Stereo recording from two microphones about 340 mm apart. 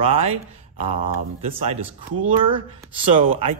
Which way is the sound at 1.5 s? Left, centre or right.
Centre.